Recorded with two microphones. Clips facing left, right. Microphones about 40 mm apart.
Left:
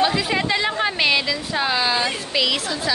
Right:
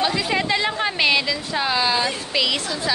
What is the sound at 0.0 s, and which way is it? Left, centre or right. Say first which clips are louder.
A woman's voice: left 1 dB; centre.